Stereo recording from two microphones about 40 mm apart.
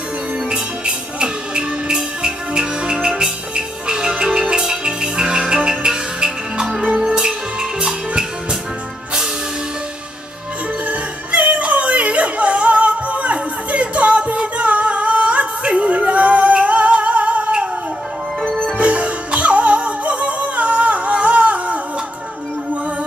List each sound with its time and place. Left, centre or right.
0.5 s music: right
10.9 s music: right
18.8 s music: right